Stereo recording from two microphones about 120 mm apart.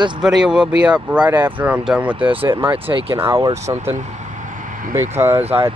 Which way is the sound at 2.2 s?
45° right (ahead or behind).